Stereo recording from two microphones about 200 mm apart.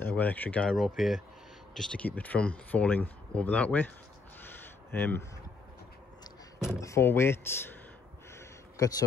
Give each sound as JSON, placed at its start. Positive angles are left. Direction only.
{"t": 0.0, "sound": "speech", "side_deg": 10}
{"t": 4.9, "sound": "speech", "side_deg": 10}
{"t": 6.8, "sound": "speech", "side_deg": 15}
{"t": 8.4, "sound": "a sound", "side_deg": 15}